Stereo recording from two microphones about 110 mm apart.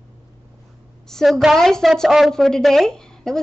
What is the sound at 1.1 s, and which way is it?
A woman's voice, 5° left (ahead or behind).